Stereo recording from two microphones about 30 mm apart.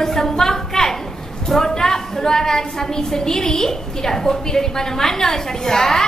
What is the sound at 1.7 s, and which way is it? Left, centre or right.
A woman's voice, centre.